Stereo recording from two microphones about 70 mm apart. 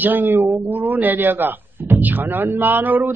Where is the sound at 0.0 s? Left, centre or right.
Right.